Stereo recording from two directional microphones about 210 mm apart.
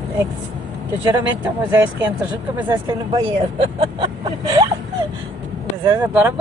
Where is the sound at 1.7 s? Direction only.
10° right (ahead or behind).